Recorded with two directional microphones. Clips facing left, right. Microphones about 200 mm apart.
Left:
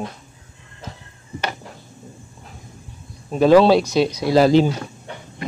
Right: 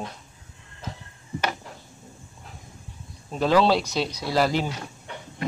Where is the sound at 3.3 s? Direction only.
15° left (ahead or behind).